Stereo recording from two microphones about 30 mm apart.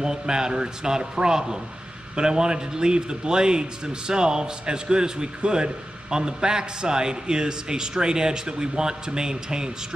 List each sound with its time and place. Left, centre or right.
0.0 s speech: right